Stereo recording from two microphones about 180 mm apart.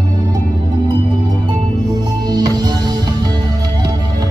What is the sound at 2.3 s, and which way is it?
Music, 20° right (ahead or behind).